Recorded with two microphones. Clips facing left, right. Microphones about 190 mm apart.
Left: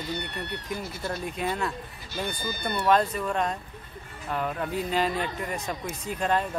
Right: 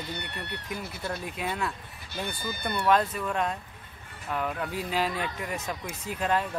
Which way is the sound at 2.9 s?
5° right (ahead or behind).